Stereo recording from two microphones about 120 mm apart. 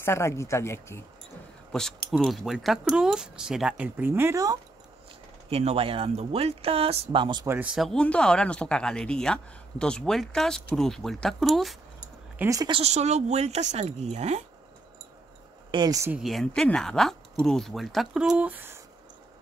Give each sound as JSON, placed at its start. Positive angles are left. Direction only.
{"t": 0.0, "sound": "speech", "side_deg": 20}
{"t": 1.7, "sound": "speech", "side_deg": 5}
{"t": 5.5, "sound": "speech", "side_deg": -60}
{"t": 7.4, "sound": "speech", "side_deg": -15}
{"t": 7.7, "sound": "speech", "side_deg": 0}
{"t": 12.4, "sound": "speech", "side_deg": -30}
{"t": 12.7, "sound": "speech", "side_deg": -65}
{"t": 15.7, "sound": "speech", "side_deg": -35}
{"t": 16.2, "sound": "speech", "side_deg": 0}